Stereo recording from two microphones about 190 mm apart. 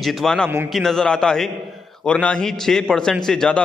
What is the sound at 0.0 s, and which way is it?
A man's voice, centre (ahead or behind).